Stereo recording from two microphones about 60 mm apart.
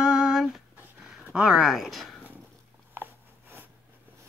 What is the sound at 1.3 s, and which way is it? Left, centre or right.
Speech, centre.